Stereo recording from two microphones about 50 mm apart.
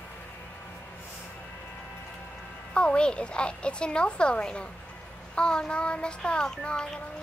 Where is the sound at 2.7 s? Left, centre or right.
Left.